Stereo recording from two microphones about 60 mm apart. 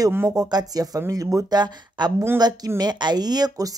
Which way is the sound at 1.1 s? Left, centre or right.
Right.